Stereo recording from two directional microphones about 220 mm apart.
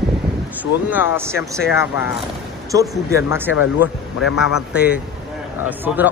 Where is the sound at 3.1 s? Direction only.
10° right (ahead or behind).